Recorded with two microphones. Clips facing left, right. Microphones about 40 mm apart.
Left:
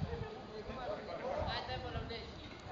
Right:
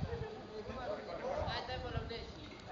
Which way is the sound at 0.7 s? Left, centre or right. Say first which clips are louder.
Even; centre.